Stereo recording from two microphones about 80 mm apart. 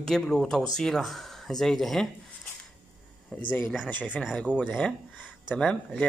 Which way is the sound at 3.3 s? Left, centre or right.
Centre.